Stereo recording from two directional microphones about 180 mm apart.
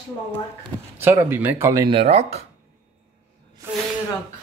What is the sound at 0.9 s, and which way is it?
Speech, 10° right (ahead or behind).